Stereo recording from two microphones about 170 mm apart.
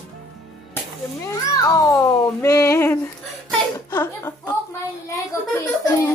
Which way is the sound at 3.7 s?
15° left (ahead or behind).